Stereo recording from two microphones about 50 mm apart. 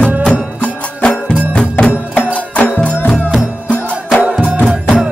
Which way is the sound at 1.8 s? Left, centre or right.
Left.